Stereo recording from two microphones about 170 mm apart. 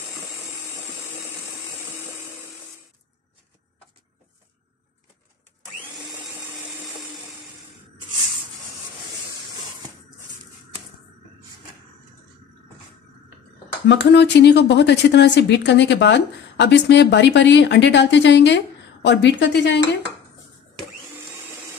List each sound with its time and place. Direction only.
13.8 s speech: 90° left